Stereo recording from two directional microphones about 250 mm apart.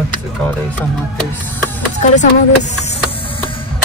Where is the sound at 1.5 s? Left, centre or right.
Centre.